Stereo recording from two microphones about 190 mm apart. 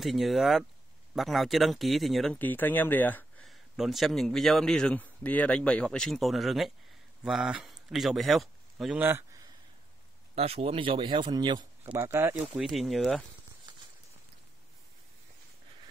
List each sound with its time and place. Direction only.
0.0 s speech: centre (ahead or behind)
3.7 s a man's voice: centre (ahead or behind)
9.0 s a sound: 10° right (ahead or behind)
10.3 s a man's voice: 30° right (ahead or behind); by 13.2 s centre (ahead or behind)